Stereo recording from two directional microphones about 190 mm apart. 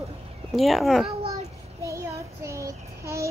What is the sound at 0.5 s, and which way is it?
Speech, centre (ahead or behind).